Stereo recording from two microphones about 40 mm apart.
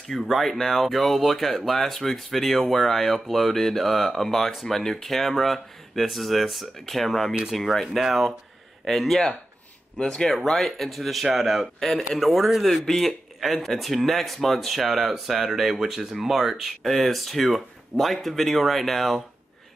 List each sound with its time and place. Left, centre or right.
0.1 s speech: centre
9.9 s speech: centre
10.3 s speech: centre
12.8 s speech: centre